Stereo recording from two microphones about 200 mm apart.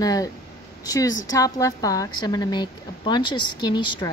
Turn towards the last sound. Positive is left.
turn(degrees=25)  # may be behind; listen again after turning